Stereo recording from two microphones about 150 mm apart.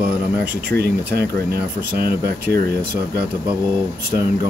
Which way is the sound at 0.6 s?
90° right.